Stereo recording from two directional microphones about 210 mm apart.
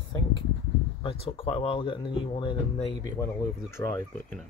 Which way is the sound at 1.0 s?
25° left (ahead or behind).